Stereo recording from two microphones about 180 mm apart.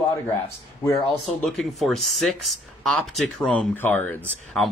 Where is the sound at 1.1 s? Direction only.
Centre (ahead or behind).